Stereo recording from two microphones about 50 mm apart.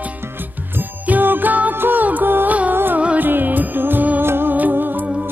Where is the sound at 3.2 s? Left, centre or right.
Right.